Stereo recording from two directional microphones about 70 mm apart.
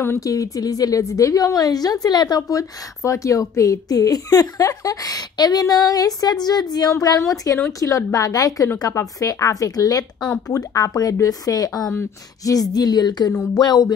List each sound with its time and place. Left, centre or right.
0.2 s a woman's voice: left
6.9 s a woman's voice: left